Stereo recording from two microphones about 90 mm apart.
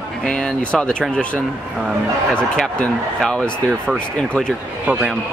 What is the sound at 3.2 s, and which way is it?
Speech, 5° left (ahead or behind).